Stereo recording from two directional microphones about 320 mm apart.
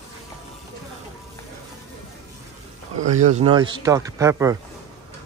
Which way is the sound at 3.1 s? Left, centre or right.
Right.